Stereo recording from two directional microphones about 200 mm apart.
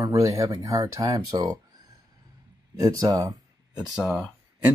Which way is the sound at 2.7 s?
15° right (ahead or behind).